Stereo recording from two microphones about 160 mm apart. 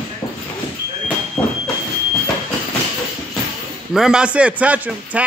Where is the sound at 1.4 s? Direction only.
10° left (ahead or behind).